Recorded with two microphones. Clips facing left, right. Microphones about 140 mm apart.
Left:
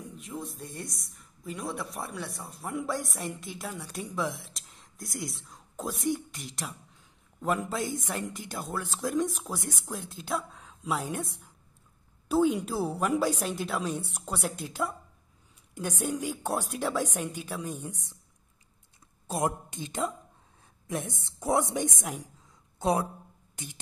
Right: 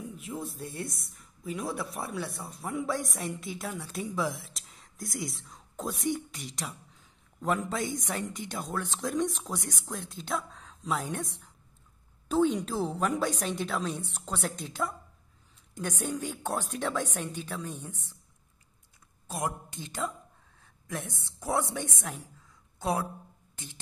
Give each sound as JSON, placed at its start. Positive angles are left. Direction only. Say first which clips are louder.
{"t": 0.1, "sound": "a woman's voice", "louder": "right 1 dB", "side_deg": 0}
{"t": 19.2, "sound": "a woman's voice", "louder": "left 4 dB", "side_deg": 25}